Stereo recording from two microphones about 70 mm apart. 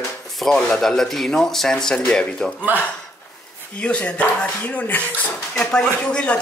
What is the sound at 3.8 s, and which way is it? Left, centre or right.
Speech, centre.